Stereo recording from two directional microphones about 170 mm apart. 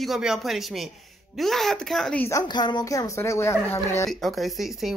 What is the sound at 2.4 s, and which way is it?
A man's voice, 25° left (ahead or behind).